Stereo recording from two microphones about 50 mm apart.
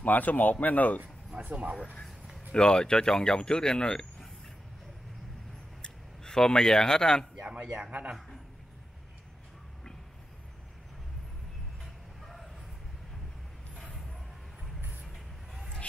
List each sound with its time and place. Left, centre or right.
0.0 s speech: left
1.5 s a man's voice: right
2.5 s speech: centre
5.8 s speech: centre
7.3 s a man's voice: right
11.8 s vehicle: centre
15.1 s vehicle: centre